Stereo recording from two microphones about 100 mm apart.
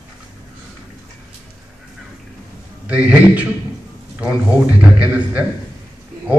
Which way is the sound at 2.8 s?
15° right (ahead or behind).